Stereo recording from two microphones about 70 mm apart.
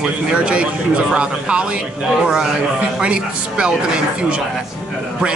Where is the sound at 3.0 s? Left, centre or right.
Centre.